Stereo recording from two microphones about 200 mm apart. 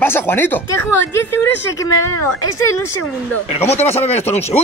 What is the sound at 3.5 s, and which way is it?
Speech, 30° left (ahead or behind).